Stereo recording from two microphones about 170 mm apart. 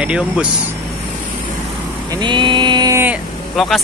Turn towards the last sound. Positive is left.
turn(degrees=-5)  # may be behind; listen again after turning